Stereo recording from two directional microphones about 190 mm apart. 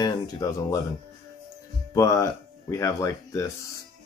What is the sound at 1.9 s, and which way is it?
Speech, 15° left (ahead or behind).